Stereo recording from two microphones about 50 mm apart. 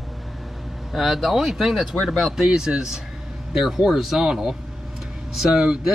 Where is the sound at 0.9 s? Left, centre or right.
Centre.